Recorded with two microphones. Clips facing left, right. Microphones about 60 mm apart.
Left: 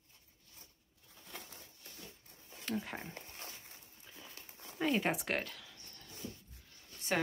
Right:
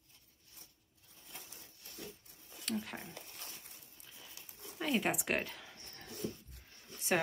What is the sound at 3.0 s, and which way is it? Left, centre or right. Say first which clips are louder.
Dog: left 2 dB; left.